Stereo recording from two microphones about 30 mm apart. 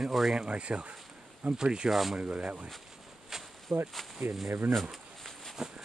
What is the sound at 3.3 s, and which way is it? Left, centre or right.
Insect, centre.